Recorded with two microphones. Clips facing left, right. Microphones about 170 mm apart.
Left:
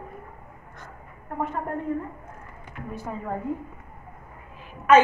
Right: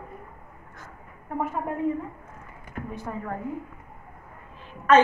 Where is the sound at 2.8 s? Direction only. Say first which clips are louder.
Right 3 dB; 45° right (ahead or behind).